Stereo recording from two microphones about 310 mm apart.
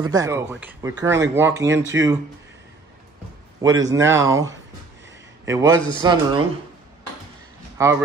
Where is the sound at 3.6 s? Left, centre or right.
Centre.